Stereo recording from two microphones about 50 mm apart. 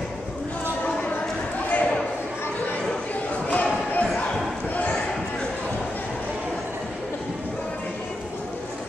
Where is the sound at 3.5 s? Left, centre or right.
Left.